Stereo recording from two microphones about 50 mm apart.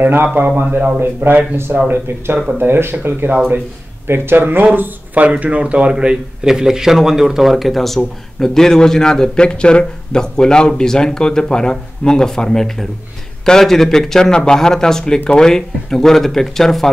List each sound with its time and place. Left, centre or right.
0.0 s speech: right
2.6 s speech: right
5.2 s a man's voice: right; by 16.9 s centre